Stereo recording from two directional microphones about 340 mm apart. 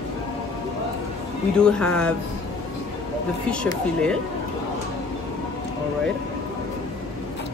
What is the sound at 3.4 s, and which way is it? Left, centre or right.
Speech, centre.